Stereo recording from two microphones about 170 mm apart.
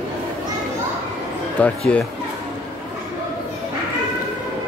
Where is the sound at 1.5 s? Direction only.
5° left (ahead or behind).